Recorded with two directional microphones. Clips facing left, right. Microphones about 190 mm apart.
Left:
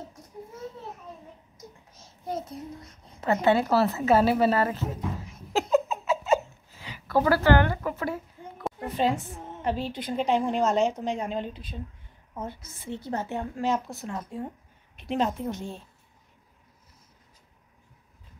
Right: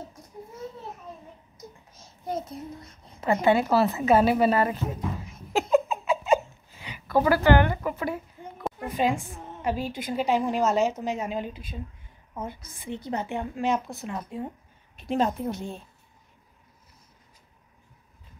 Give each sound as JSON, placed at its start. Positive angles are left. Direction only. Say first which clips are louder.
{"t": 3.2, "sound": "a woman's voice", "louder": "right 1 dB", "side_deg": -10}
{"t": 5.5, "sound": "giggle", "louder": "right 1 dB", "side_deg": -15}
{"t": 8.8, "sound": "a woman's voice", "louder": "even", "side_deg": -10}
{"t": 15.0, "sound": "a woman's voice", "louder": "right 2 dB", "side_deg": -45}